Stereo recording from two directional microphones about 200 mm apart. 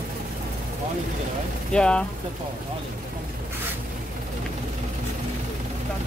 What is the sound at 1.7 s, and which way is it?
Speech, 5° left (ahead or behind).